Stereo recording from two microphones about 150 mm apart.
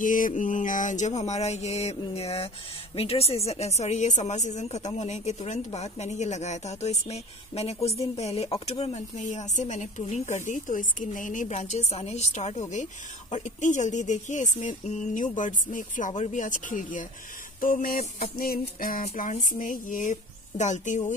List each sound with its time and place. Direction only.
0.0 s a woman's voice: 60° left (ahead or behind)
17.6 s music: 65° left (ahead or behind)
19.0 s speech: 60° left (ahead or behind)